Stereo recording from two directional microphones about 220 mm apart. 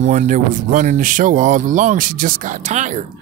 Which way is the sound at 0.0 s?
35° right (ahead or behind).